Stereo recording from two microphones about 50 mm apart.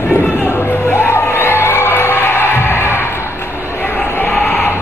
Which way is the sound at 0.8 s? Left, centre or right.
Left.